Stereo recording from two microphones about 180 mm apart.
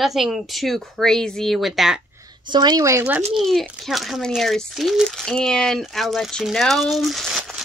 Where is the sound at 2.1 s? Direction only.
20° right (ahead or behind).